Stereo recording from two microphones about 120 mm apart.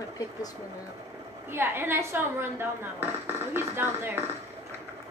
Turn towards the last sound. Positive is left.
turn(degrees=-20)  # may be behind; listen again after turning